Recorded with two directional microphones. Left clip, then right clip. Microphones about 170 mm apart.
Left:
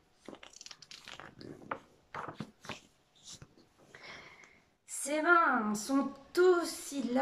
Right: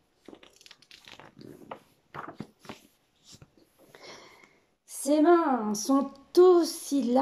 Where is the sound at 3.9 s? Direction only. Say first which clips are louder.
Right 2 dB; 45° right (ahead or behind).